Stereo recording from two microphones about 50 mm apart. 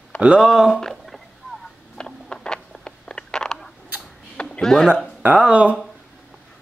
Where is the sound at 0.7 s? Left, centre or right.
Centre.